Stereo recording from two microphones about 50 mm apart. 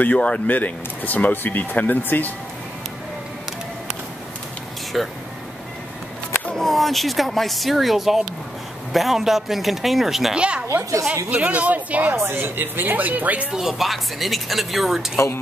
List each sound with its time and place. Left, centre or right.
0.0 s speech: left
4.9 s speech: centre
6.5 s speech: centre
10.3 s speech: right
12.2 s speech: right
13.5 s speech: centre
15.1 s a woman's voice: left